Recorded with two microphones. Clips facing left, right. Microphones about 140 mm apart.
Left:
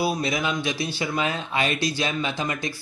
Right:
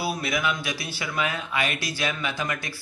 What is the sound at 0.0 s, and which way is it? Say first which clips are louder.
Speech: left 2 dB; 25° left (ahead or behind).